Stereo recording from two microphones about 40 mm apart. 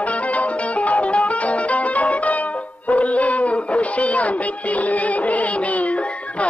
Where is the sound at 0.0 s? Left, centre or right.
Left.